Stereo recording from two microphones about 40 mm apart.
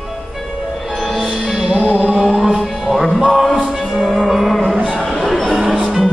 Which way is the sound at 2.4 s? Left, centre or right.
Centre.